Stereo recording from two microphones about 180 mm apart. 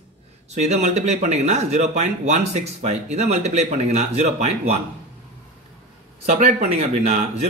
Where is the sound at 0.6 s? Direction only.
40° right (ahead or behind).